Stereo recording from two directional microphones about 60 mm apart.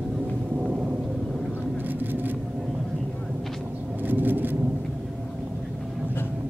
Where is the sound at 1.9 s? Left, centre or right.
Right.